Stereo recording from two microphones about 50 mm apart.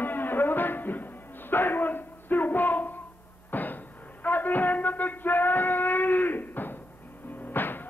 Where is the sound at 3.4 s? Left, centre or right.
Left.